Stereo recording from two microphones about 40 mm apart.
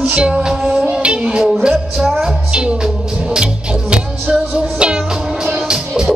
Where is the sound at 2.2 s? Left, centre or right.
Right.